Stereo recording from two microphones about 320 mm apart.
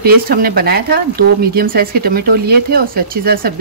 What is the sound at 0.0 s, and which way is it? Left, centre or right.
Speech, right.